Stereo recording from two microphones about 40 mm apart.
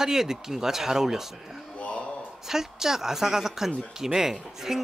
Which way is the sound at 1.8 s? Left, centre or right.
Left.